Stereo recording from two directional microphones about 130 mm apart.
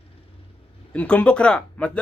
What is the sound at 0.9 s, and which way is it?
Speech, 10° left (ahead or behind).